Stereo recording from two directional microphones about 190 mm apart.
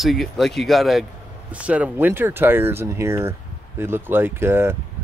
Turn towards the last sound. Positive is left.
turn(degrees=-10)  # may be behind; listen again after turning